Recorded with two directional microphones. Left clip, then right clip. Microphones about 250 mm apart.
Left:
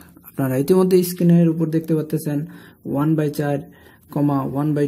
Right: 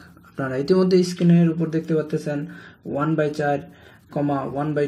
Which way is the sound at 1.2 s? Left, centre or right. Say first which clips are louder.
Left 3 dB; left.